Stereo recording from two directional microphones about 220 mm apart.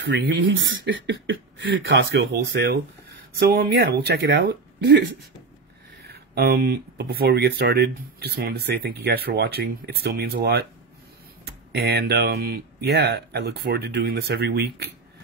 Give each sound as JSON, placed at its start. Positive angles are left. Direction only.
{"t": 0.0, "sound": "speech", "side_deg": -50}
{"t": 6.0, "sound": "speech", "side_deg": -45}